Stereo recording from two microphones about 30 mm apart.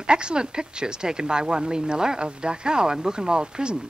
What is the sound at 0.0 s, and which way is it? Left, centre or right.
Speech, right.